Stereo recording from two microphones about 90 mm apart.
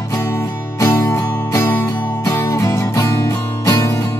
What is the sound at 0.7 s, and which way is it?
Music, 25° left (ahead or behind).